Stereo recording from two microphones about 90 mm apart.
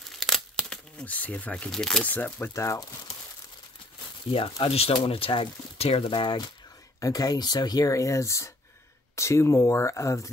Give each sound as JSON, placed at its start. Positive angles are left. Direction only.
{"t": 0.2, "sound": "a sound", "side_deg": 5}
{"t": 1.7, "sound": "speech", "side_deg": 5}
{"t": 2.0, "sound": "speech", "side_deg": 20}
{"t": 2.5, "sound": "speech", "side_deg": 30}
{"t": 4.3, "sound": "speech", "side_deg": 85}
{"t": 7.0, "sound": "speech", "side_deg": 45}